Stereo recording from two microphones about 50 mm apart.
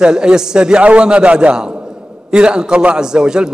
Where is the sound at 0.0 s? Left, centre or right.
Centre.